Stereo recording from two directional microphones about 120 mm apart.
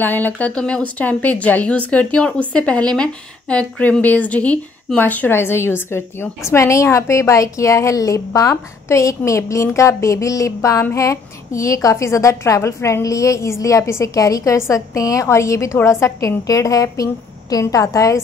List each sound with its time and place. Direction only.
0.0 s speech: 15° left (ahead or behind)